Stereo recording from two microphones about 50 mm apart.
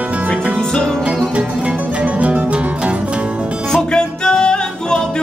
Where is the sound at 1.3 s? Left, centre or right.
Right.